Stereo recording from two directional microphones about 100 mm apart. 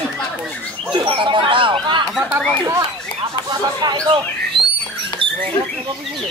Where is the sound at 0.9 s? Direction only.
55° right (ahead or behind).